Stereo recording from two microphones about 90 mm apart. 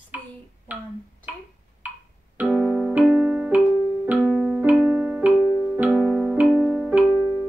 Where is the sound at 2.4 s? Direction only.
5° left (ahead or behind).